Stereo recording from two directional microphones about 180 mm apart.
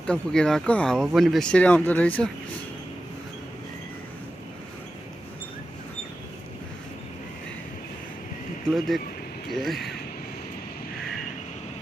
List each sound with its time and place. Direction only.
0.0 s speech: 5° left (ahead or behind)
8.7 s speech: centre (ahead or behind)